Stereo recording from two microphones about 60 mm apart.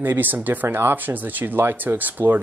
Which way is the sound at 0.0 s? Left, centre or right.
Right.